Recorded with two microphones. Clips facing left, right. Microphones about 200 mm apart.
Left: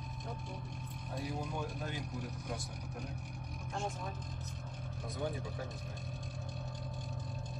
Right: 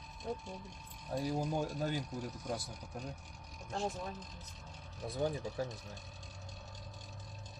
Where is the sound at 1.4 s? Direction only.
35° right (ahead or behind).